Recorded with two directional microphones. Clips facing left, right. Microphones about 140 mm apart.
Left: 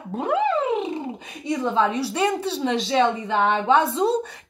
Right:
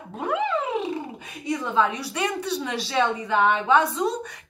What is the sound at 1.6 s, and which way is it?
A woman's voice, 30° left (ahead or behind).